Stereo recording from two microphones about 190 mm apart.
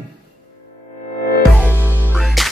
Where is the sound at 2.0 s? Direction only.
Centre (ahead or behind).